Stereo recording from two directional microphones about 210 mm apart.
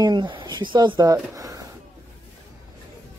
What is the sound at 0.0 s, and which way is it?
Speech, 20° right (ahead or behind).